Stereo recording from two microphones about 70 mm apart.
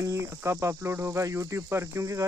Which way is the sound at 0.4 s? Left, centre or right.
Right.